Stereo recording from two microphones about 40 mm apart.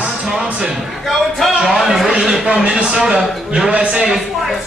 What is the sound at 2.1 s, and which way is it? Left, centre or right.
A man's voice, right.